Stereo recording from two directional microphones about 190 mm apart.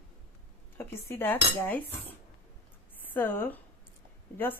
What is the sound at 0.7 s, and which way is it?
A woman's voice, 10° left (ahead or behind).